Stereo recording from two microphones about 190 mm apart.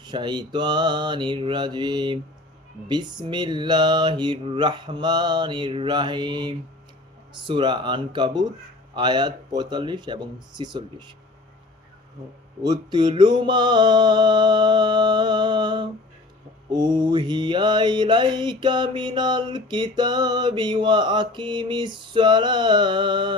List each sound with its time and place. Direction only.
0.0 s mantra: 25° right (ahead or behind)
12.6 s mantra: 20° right (ahead or behind)